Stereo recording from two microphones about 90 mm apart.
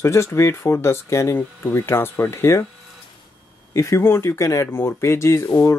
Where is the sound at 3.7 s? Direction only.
30° left (ahead or behind).